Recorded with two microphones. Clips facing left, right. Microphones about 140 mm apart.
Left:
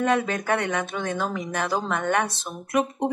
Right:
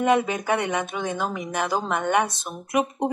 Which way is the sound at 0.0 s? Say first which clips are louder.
Right 2 dB; 15° right (ahead or behind).